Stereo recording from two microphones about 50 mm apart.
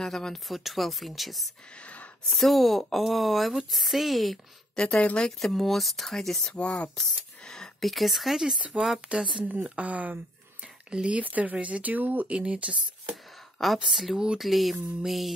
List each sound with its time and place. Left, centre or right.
0.0 s speech: centre
1.8 s a sound: left
2.2 s speech: centre
4.7 s speech: left
5.4 s speech: centre
7.0 s a sound: centre
7.8 s speech: centre
8.5 s speech: right
9.8 s speech: right
10.9 s speech: centre
11.1 s speech: right
12.3 s speech: right
13.8 s speech: centre